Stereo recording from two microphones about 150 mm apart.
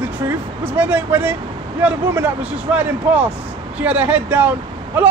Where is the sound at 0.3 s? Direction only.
10° right (ahead or behind).